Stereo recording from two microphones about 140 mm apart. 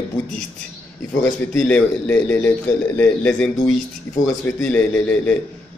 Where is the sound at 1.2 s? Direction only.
10° left (ahead or behind).